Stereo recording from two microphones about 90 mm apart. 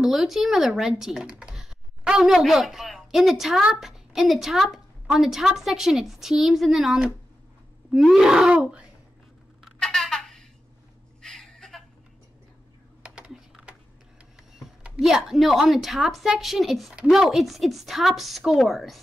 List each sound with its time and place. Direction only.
0.0 s a woman's voice: centre (ahead or behind)
9.8 s a sound: 5° left (ahead or behind)
13.0 s typing: 10° right (ahead or behind)
14.5 s a woman's voice: 5° right (ahead or behind)